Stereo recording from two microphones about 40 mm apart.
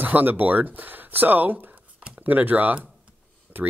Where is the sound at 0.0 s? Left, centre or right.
Right.